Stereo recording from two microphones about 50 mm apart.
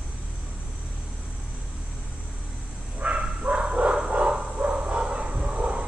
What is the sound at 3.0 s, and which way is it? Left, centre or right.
Bow-wow, right.